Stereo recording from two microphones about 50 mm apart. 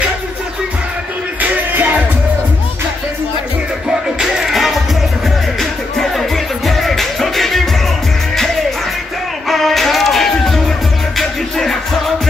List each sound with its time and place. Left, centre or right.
1.4 s music: right
4.2 s music: centre
9.5 s music: centre